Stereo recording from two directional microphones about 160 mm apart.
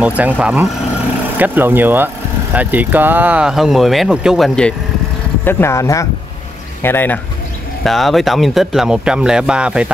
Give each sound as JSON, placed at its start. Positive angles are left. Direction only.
{"t": 0.0, "sound": "speech", "side_deg": -10}
{"t": 5.4, "sound": "speech", "side_deg": 15}
{"t": 7.8, "sound": "speech", "side_deg": 0}